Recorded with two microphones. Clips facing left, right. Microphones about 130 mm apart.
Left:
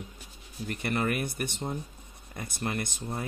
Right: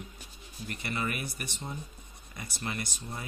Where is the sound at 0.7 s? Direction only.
55° left (ahead or behind).